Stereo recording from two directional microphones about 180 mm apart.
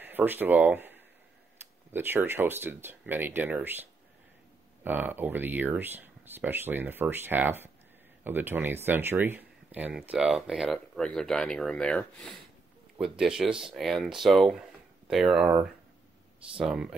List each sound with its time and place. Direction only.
0.0 s speech: 10° right (ahead or behind)